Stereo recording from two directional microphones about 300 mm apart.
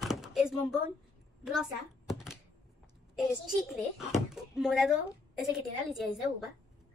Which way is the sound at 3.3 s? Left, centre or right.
Centre.